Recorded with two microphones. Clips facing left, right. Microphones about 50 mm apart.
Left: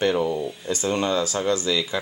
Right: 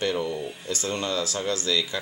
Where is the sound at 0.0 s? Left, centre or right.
Centre.